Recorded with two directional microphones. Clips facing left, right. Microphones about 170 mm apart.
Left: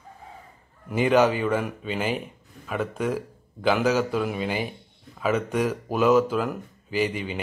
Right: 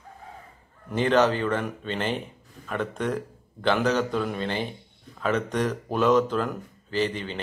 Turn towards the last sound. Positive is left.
turn(degrees=10)  # may be behind; listen again after turning